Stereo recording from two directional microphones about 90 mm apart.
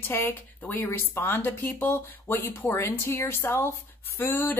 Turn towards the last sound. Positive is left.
turn(degrees=25)  # may be behind; listen again after turning